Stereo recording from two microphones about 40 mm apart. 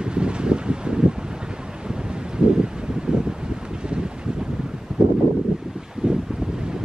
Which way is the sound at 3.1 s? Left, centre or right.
Right.